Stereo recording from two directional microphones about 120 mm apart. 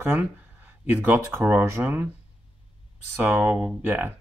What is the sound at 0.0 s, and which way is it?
Speech, 15° right (ahead or behind).